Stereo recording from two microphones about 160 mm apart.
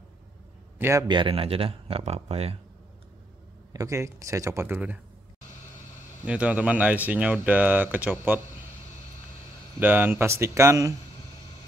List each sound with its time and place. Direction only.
0.7 s a man's voice: 15° right (ahead or behind)
1.0 s speech: 30° right (ahead or behind)
3.7 s speech: 20° right (ahead or behind)
6.2 s speech: 5° right (ahead or behind)
9.8 s speech: 10° right (ahead or behind)